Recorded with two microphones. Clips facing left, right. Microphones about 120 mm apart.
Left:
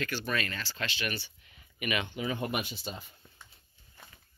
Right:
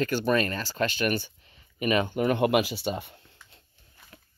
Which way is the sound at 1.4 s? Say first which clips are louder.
Right 8 dB; 35° right (ahead or behind).